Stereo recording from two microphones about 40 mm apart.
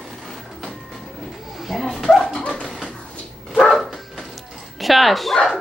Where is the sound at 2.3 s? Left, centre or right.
Left.